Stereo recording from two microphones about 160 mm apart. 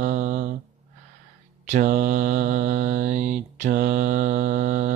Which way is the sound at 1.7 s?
55° right (ahead or behind).